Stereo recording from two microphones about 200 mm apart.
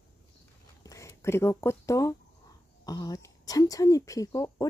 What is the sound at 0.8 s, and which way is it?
Speech, 15° left (ahead or behind).